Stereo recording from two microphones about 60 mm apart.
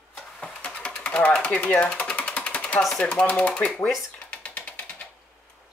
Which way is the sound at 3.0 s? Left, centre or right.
Centre.